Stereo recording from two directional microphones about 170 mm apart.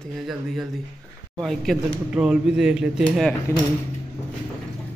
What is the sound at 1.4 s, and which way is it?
Speech, centre (ahead or behind).